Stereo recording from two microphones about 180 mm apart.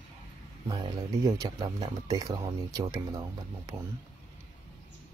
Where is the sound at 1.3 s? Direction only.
20° right (ahead or behind).